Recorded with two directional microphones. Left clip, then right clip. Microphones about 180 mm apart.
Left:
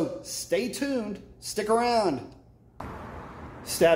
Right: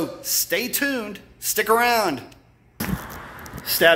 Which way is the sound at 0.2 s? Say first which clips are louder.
Right 4 dB; 5° right (ahead or behind).